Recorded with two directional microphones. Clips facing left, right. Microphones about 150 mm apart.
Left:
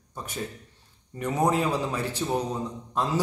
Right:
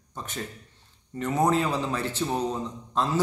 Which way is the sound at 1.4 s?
10° left (ahead or behind).